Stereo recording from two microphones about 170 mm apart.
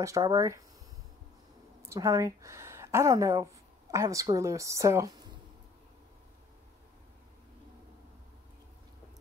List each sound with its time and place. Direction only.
0.0 s a woman's voice: 20° right (ahead or behind)
1.8 s a woman's voice: 15° right (ahead or behind)